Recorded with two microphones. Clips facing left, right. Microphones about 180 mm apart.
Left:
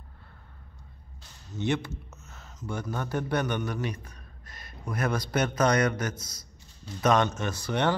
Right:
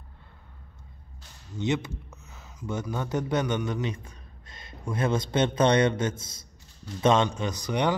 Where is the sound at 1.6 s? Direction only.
20° right (ahead or behind).